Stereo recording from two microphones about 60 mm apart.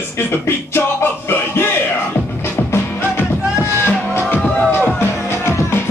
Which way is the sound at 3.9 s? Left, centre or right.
Left.